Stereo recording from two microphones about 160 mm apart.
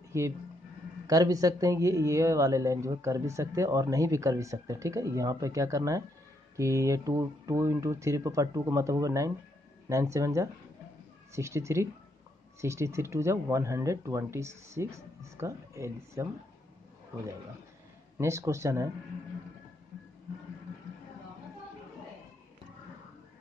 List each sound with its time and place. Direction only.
0.1 s a woman's voice: 15° right (ahead or behind)
18.1 s speech: 20° right (ahead or behind)